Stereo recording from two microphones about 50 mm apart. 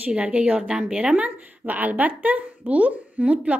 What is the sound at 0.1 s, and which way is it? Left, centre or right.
Speech, right.